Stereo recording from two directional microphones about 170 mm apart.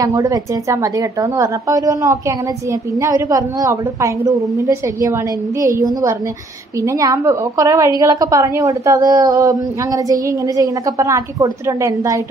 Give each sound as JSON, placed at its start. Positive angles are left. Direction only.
{"t": 0.0, "sound": "a woman's voice", "side_deg": -20}